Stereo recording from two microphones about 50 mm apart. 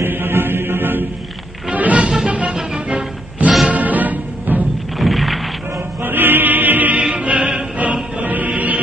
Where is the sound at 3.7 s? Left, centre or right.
Right.